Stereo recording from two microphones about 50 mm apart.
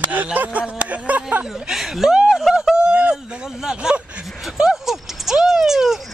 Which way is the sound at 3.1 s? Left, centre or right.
Centre.